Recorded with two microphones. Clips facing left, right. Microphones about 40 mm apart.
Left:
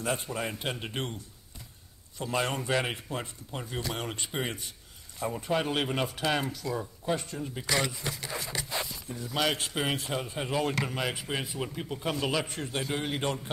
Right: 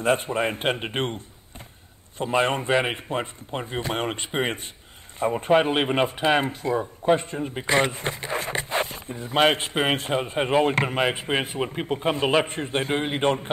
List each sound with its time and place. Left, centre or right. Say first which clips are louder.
0.0 s speech: right 9 dB; right